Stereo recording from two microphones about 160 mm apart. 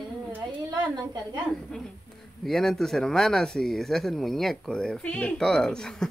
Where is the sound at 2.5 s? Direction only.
Centre (ahead or behind).